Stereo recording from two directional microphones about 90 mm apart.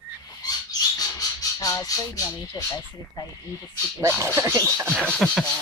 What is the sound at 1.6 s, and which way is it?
Speech, 45° left (ahead or behind).